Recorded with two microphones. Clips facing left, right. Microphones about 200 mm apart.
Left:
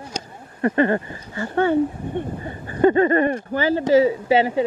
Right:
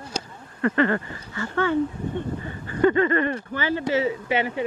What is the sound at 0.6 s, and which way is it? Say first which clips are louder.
Speech: left 3 dB; 20° left (ahead or behind).